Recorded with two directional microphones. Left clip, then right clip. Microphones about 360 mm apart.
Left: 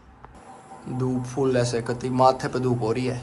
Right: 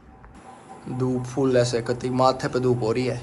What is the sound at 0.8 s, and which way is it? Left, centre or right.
A man's voice, centre.